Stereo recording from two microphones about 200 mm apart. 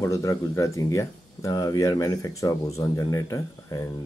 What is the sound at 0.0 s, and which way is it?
Speech, 15° left (ahead or behind).